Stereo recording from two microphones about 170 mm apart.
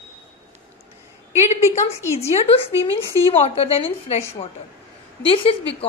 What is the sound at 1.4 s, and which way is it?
A woman's voice, 40° left (ahead or behind).